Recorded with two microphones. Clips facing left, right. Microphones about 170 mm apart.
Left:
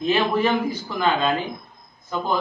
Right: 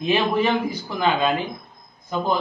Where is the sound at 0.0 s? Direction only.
15° right (ahead or behind).